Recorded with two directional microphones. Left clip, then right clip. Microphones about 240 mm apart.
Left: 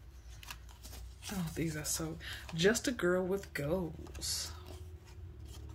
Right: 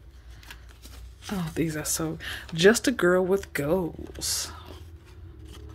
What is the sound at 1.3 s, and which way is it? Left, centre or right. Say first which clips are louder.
Speech: right 10 dB; right.